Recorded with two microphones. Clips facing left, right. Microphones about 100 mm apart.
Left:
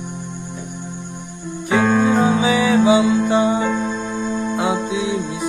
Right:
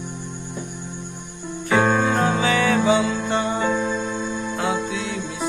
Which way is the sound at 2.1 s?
10° left (ahead or behind).